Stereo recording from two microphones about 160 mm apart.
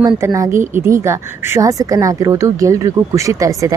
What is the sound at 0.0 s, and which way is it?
Speech, 20° right (ahead or behind).